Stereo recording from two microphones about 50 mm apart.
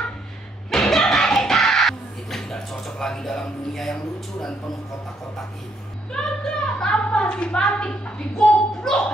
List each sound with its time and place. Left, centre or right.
0.7 s music: centre
6.1 s a sound: centre
7.6 s a woman's voice: centre